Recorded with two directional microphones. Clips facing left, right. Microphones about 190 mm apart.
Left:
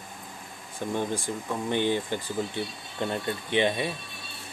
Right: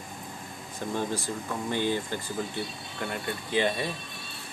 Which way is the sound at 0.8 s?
15° left (ahead or behind).